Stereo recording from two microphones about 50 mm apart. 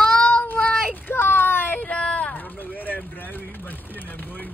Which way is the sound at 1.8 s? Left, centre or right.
Left.